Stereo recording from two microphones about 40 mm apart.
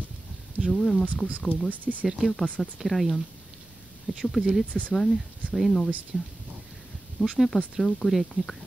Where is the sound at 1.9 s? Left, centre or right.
Centre.